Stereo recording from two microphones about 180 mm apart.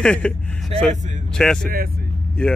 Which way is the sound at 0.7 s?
35° right (ahead or behind).